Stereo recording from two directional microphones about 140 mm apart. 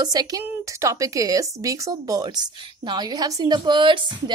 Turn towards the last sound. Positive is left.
turn(degrees=-35)  # may be behind; listen again after turning